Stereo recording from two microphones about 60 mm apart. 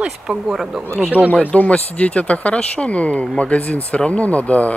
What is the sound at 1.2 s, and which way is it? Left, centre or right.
Speech, left.